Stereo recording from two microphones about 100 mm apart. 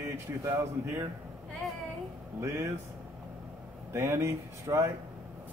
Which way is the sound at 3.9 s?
30° right (ahead or behind).